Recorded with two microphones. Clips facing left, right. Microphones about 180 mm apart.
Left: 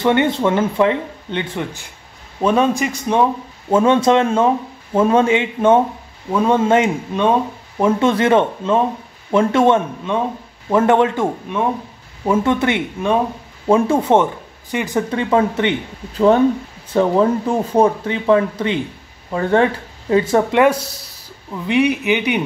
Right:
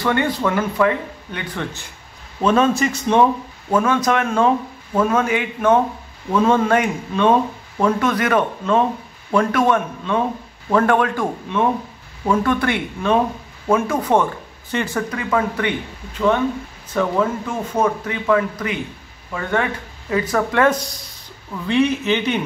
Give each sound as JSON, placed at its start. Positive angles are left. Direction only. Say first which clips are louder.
{"t": 0.0, "sound": "speech", "louder": "left 4 dB", "side_deg": 20}
{"t": 2.4, "sound": "a man's voice", "louder": "even", "side_deg": 15}
{"t": 3.7, "sound": "speech", "louder": "left 5 dB", "side_deg": 25}
{"t": 8.0, "sound": "speech", "louder": "left 4 dB", "side_deg": 25}
{"t": 14.7, "sound": "speech", "louder": "left 1 dB", "side_deg": 10}
{"t": 15.0, "sound": "speech", "louder": "left 7 dB", "side_deg": 30}
{"t": 16.9, "sound": "speech", "louder": "left 5 dB", "side_deg": 30}
{"t": 20.6, "sound": "a man's voice", "louder": "left 3 dB", "side_deg": 5}